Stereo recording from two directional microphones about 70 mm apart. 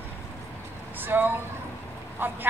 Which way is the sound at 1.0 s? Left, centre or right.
Right.